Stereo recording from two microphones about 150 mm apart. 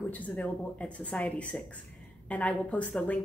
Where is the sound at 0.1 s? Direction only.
10° left (ahead or behind).